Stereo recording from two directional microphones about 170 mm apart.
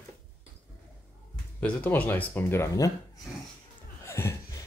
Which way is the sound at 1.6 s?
10° left (ahead or behind).